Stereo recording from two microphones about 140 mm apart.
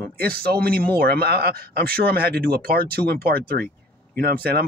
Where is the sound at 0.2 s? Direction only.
90° right.